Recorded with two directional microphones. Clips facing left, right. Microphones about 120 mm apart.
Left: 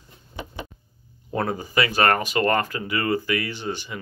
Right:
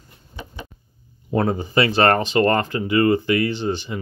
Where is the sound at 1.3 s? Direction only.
30° right (ahead or behind).